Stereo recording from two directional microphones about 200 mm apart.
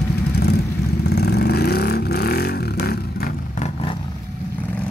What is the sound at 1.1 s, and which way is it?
Vehicle, 55° left (ahead or behind).